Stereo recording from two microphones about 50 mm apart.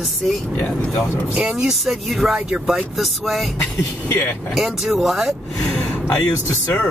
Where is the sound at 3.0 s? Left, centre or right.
Centre.